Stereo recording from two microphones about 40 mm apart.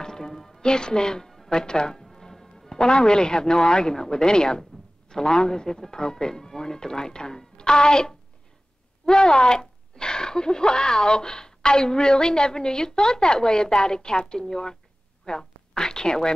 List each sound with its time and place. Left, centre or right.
0.0 s speech: centre